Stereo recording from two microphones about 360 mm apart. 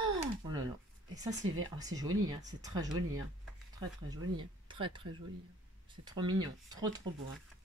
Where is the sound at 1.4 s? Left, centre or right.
Right.